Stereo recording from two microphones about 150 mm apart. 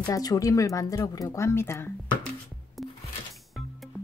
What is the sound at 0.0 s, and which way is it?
Speech, 25° left (ahead or behind).